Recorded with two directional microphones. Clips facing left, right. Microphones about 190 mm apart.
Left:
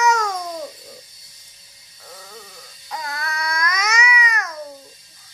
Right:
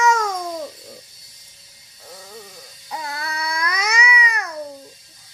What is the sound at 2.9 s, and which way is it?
Babbling, 25° right (ahead or behind).